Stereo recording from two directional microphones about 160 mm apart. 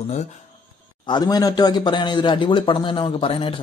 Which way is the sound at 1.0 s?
25° left (ahead or behind).